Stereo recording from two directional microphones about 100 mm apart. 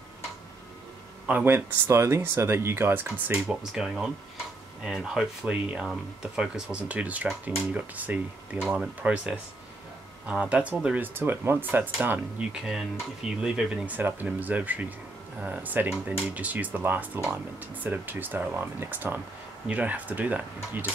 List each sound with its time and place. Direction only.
1.2 s speech: 20° right (ahead or behind)
3.4 s speech: 5° right (ahead or behind)
12.6 s speech: 5° right (ahead or behind)